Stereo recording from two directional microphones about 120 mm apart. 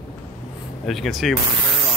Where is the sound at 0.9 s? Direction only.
Centre (ahead or behind).